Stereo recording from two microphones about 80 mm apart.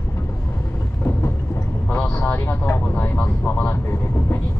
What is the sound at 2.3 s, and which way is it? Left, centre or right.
Vehicle, left.